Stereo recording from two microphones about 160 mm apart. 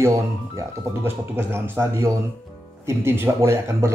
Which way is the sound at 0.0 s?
20° right (ahead or behind).